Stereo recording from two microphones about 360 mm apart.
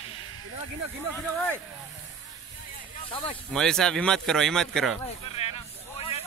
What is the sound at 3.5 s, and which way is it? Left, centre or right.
Speech, centre.